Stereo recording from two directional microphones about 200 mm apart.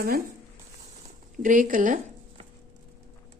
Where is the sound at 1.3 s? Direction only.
40° right (ahead or behind).